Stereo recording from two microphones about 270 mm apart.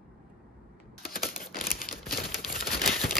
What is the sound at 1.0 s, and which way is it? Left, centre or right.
Camera, left.